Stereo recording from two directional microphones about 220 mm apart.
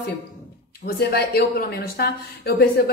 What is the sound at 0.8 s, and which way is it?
Speech, 45° left (ahead or behind).